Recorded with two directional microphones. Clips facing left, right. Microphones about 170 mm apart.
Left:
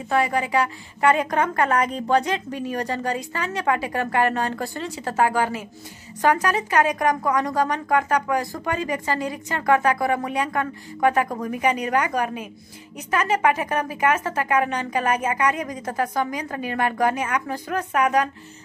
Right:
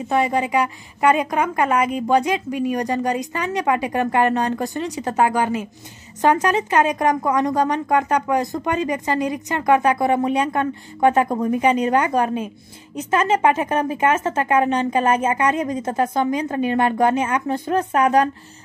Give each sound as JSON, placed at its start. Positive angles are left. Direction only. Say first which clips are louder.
{"t": 0.1, "sound": "a woman's voice", "louder": "right 2 dB", "side_deg": -20}